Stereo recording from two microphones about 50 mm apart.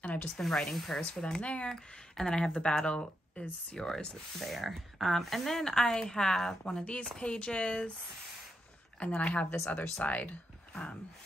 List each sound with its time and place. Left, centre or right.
0.0 s a sound: left
0.4 s speech: centre
1.2 s speech: left
4.4 s speech: centre
6.8 s speech: left
9.0 s speech: left
10.7 s speech: left